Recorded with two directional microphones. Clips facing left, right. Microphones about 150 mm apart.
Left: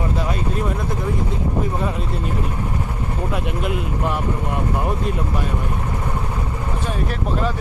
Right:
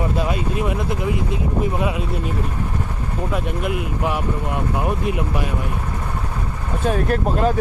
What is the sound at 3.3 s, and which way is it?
Speech, centre (ahead or behind).